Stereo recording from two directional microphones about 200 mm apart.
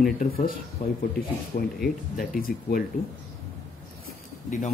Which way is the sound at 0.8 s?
35° left (ahead or behind).